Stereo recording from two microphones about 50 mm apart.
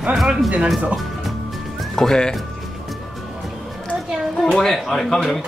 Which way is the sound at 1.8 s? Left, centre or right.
Centre.